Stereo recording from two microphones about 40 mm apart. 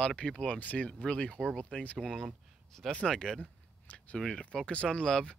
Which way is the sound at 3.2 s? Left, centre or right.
Centre.